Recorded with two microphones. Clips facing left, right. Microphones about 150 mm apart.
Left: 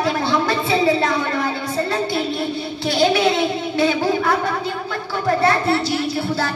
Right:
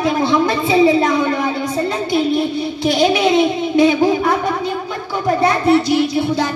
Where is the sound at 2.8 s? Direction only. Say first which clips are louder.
Right 2 dB; 20° right (ahead or behind).